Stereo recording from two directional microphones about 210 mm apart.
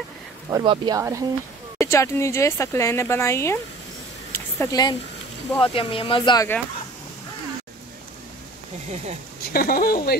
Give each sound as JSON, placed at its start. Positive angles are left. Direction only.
{"t": 0.5, "sound": "speech", "side_deg": -20}
{"t": 1.8, "sound": "speech", "side_deg": 15}
{"t": 4.3, "sound": "a sound", "side_deg": 15}
{"t": 5.6, "sound": "speech", "side_deg": 25}
{"t": 9.4, "sound": "speech", "side_deg": 45}